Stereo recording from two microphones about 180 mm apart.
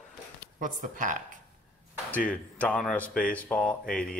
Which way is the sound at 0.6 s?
45° right (ahead or behind).